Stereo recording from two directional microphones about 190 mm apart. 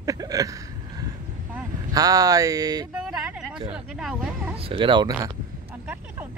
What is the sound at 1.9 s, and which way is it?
Speech, 20° right (ahead or behind).